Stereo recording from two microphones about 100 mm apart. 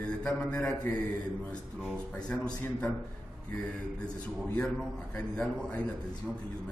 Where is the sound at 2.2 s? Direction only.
10° left (ahead or behind).